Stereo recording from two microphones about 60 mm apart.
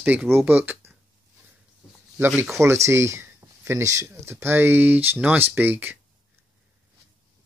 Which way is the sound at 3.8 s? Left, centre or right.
Right.